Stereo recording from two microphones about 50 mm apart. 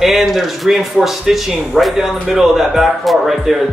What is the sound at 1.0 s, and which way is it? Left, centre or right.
A man's voice, centre.